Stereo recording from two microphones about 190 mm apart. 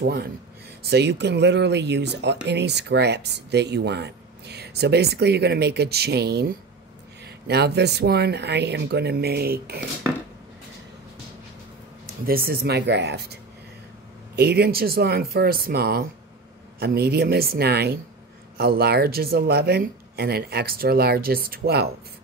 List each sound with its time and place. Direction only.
0.0 s speech: 55° right (ahead or behind)
12.3 s speech: 50° right (ahead or behind)